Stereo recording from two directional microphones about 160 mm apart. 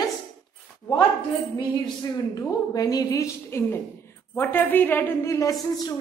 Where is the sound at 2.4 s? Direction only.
20° left (ahead or behind).